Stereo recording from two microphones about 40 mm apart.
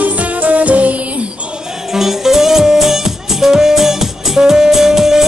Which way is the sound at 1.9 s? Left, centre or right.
Centre.